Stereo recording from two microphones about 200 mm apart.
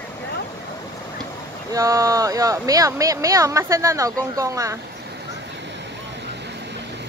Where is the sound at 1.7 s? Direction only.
15° right (ahead or behind).